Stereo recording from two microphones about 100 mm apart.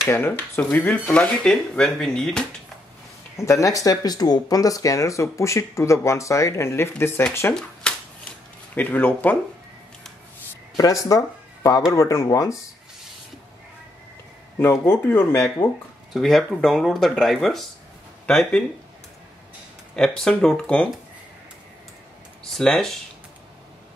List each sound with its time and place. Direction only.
0.6 s speech: 10° left (ahead or behind)
3.3 s speech: 30° left (ahead or behind)
7.8 s a sound: 10° left (ahead or behind)
8.7 s speech: 20° left (ahead or behind)
10.8 s speech: 35° left (ahead or behind)
14.6 s speech: 25° left (ahead or behind)
16.1 s speech: centre (ahead or behind)
20.0 s speech: 5° left (ahead or behind)
22.5 s speech: 5° left (ahead or behind)